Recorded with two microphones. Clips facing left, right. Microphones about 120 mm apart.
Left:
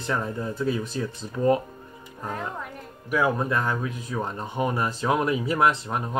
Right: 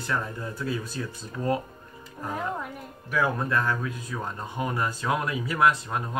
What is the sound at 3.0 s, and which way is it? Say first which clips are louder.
Speech: left 3 dB; 15° left (ahead or behind).